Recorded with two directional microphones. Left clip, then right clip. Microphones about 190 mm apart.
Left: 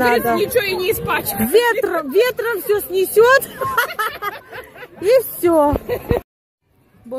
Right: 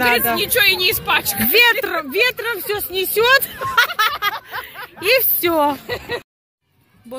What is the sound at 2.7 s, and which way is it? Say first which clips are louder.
Speech: left 5 dB; 25° left (ahead or behind).